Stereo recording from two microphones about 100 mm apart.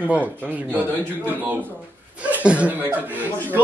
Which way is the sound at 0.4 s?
15° right (ahead or behind).